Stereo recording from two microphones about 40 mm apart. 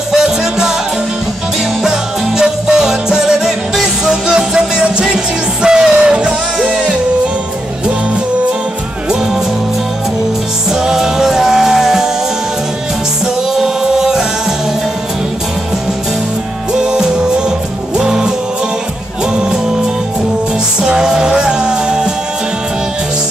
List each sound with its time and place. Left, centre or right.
0.1 s music: centre
1.8 s music: centre
10.7 s music: centre
13.6 s chant: centre
16.7 s music: centre
20.8 s music: centre